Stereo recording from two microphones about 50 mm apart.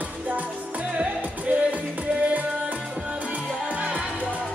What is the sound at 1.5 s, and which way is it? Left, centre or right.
Music, right.